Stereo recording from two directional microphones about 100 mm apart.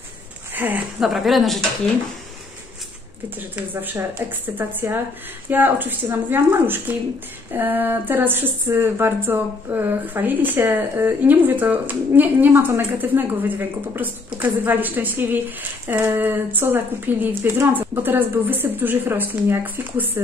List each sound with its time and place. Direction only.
0.6 s speech: 15° right (ahead or behind)
1.0 s speech: centre (ahead or behind)
3.3 s speech: 20° right (ahead or behind)